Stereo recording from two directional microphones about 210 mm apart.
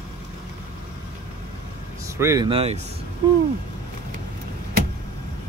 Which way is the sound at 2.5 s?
30° right (ahead or behind).